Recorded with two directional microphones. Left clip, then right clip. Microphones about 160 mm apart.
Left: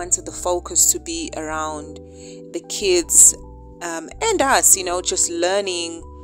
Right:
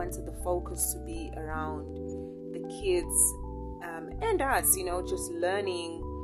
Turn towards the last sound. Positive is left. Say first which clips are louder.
# left 10 dB
turn(degrees=55)  # may be behind; listen again after turning